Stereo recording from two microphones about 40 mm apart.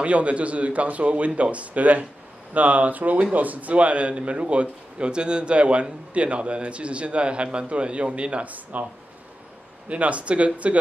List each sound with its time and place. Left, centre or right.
0.0 s a man's voice: right
8.7 s a man's voice: right